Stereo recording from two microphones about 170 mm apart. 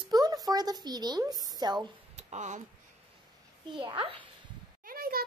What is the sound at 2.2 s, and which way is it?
Speech, 40° right (ahead or behind).